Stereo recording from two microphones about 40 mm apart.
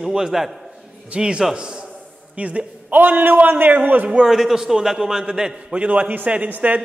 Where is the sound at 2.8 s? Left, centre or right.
Right.